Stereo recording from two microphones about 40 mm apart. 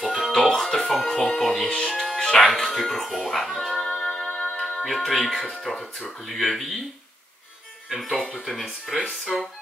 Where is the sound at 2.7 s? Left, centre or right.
Centre.